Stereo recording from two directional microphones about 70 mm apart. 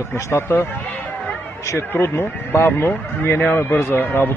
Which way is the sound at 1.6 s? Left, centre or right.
Left.